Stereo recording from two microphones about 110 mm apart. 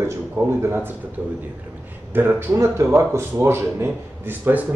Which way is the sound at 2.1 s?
20° right (ahead or behind).